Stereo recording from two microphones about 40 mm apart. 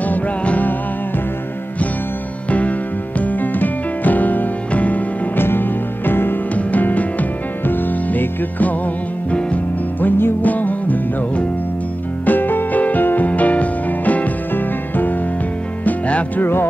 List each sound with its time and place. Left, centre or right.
0.0 s music: left
3.2 s music: left
5.3 s music: left
6.5 s music: left
9.9 s music: left
10.4 s music: left
12.3 s music: left